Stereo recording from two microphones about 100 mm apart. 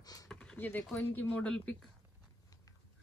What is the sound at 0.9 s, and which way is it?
Speech, 10° left (ahead or behind).